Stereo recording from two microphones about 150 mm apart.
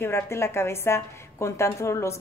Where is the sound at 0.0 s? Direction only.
15° left (ahead or behind).